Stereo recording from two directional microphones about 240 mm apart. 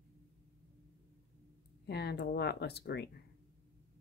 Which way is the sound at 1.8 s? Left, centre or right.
Left.